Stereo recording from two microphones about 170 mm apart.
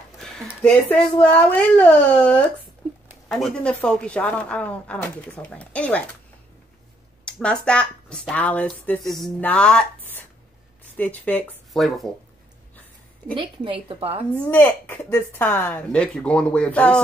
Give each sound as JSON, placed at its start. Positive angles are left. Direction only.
{"t": 0.2, "sound": "a sound", "side_deg": 0}
{"t": 0.7, "sound": "speech", "side_deg": 5}
{"t": 7.2, "sound": "speech", "side_deg": 5}
{"t": 13.3, "sound": "a woman's voice", "side_deg": -30}
{"t": 14.3, "sound": "speech", "side_deg": 10}